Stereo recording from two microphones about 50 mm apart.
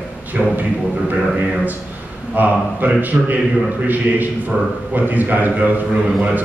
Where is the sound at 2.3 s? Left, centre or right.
Right.